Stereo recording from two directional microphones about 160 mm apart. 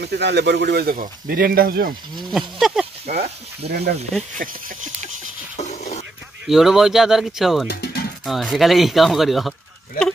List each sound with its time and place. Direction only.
0.0 s a man's voice: 90° right
0.9 s speech: 60° right (ahead or behind)
2.3 s speech: centre (ahead or behind)
3.6 s a man's voice: 90° right
4.4 s speech: 55° right (ahead or behind)
5.6 s a sound: 45° left (ahead or behind)
6.4 s speech: centre (ahead or behind)
7.6 s music: 75° left (ahead or behind)
8.3 s speech: centre (ahead or behind)